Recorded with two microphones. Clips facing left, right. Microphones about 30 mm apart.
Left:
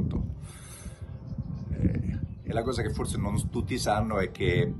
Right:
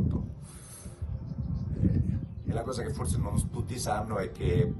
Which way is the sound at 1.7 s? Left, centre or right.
Left.